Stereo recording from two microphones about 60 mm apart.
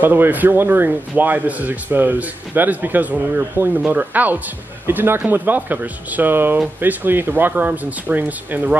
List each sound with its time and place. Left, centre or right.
0.0 s speech: right